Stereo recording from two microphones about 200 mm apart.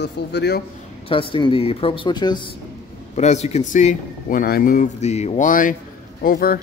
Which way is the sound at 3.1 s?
35° left (ahead or behind).